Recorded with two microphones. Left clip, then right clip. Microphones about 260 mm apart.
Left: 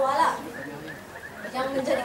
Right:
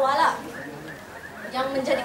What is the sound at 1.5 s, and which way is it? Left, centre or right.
Speech, centre.